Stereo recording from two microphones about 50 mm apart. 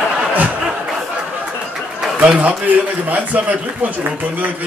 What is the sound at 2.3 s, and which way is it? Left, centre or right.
A man's voice, right.